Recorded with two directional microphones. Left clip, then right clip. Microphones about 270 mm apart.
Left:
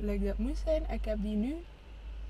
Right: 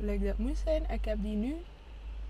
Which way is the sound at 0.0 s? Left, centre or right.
Centre.